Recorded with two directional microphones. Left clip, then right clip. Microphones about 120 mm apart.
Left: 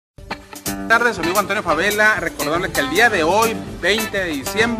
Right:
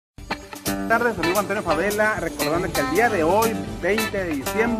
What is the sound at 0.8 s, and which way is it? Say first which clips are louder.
Speech: left 5 dB; 30° left (ahead or behind).